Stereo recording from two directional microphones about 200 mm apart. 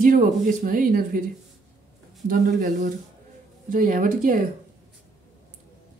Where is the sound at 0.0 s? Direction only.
40° right (ahead or behind).